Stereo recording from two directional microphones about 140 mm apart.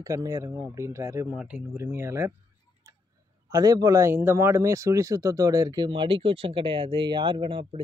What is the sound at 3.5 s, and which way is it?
Speech, 25° right (ahead or behind).